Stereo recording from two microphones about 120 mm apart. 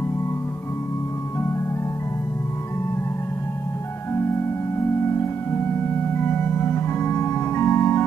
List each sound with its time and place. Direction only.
6.1 s organ: 20° left (ahead or behind)